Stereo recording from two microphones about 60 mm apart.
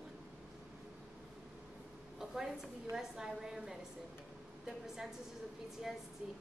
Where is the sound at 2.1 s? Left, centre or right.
Centre.